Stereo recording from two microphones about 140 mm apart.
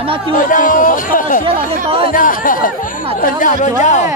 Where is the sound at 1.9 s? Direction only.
80° left.